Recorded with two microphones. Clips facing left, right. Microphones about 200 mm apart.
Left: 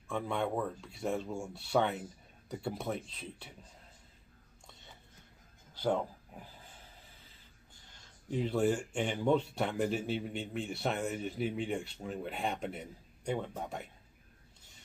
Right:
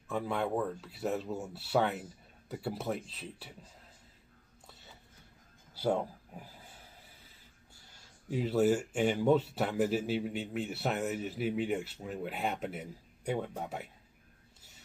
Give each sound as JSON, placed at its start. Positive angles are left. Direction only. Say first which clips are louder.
{"t": 0.1, "sound": "speech", "louder": "right 1 dB", "side_deg": -5}
{"t": 5.8, "sound": "a sound", "louder": "right 1 dB", "side_deg": -10}
{"t": 7.7, "sound": "speech", "louder": "even", "side_deg": -10}